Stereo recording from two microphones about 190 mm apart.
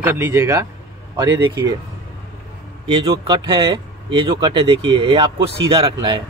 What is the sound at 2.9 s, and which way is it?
Speech, 25° right (ahead or behind).